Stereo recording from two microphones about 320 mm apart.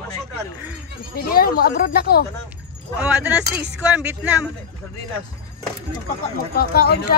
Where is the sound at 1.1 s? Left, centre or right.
Left.